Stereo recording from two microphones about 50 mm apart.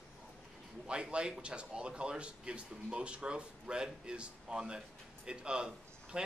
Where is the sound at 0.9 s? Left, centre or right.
Centre.